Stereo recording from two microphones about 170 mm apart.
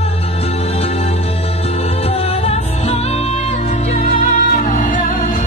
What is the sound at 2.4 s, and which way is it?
Music, 35° left (ahead or behind).